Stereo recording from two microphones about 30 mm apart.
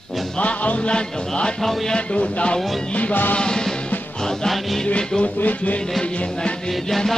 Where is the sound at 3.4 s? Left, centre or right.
Left.